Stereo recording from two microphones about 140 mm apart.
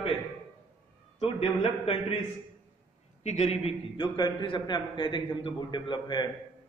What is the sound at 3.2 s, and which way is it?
Speech, 55° left (ahead or behind).